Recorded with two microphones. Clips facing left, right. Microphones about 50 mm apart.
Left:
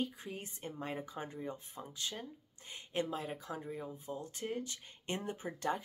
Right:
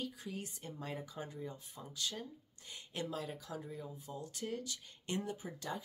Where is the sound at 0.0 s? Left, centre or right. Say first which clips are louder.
Left 3 dB; left.